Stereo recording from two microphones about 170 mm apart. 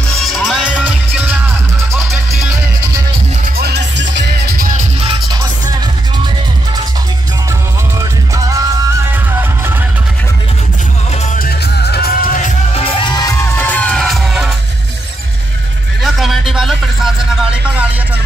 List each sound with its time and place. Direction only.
0.2 s music: centre (ahead or behind)
3.5 s music: 75° right (ahead or behind)
5.0 s music: 25° right (ahead or behind)
8.0 s music: 20° right (ahead or behind)
11.3 s music: 65° left (ahead or behind)
12.7 s music: 35° left (ahead or behind); by 14.5 s centre (ahead or behind)
16.0 s a sound: centre (ahead or behind)